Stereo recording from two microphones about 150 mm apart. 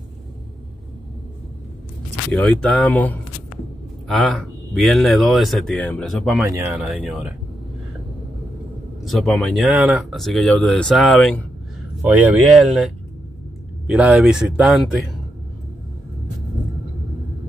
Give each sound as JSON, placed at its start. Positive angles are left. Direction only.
{"t": 2.3, "sound": "speech", "side_deg": 5}
{"t": 6.4, "sound": "speech", "side_deg": -15}
{"t": 6.7, "sound": "speech", "side_deg": -5}
{"t": 9.0, "sound": "speech", "side_deg": 0}
{"t": 9.6, "sound": "speech", "side_deg": -10}
{"t": 12.0, "sound": "speech", "side_deg": -10}
{"t": 13.8, "sound": "speech", "side_deg": -5}